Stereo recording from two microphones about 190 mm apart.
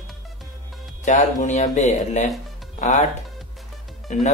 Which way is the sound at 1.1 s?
40° left (ahead or behind).